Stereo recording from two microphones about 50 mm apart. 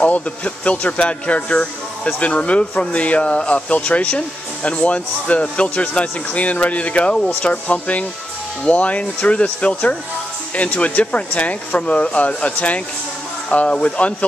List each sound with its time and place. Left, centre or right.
0.0 s speech: left